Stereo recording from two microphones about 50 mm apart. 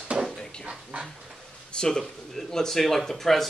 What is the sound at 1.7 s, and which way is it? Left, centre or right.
Speech, centre.